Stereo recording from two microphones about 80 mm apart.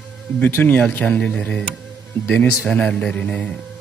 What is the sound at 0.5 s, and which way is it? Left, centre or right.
Speech, left.